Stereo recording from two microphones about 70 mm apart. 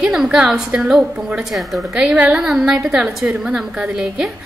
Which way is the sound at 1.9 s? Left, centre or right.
Centre.